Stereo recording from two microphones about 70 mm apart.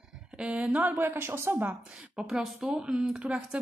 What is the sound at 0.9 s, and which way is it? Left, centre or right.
Speech, right.